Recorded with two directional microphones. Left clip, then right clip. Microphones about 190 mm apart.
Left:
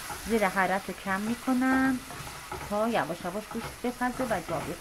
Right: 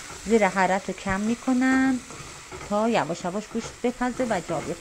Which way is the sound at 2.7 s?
35° right (ahead or behind).